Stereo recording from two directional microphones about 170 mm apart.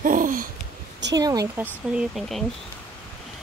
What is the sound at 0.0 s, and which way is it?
Wheeze, 50° right (ahead or behind).